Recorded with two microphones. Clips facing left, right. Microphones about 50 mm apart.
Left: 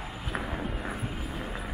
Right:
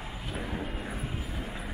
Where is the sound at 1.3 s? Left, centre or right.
Centre.